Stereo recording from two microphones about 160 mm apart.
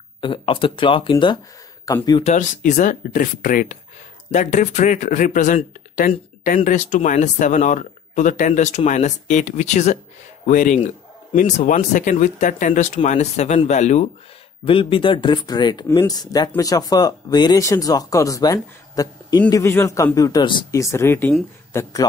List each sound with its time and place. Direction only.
0.2 s speech: 30° left (ahead or behind)
2.2 s speech: 50° left (ahead or behind)
14.6 s speech: 35° left (ahead or behind); by 21.9 s 15° left (ahead or behind)